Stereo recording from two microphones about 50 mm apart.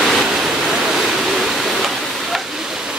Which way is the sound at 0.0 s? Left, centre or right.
Centre.